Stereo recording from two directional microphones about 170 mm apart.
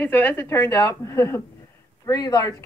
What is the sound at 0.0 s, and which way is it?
A woman's voice, 10° left (ahead or behind).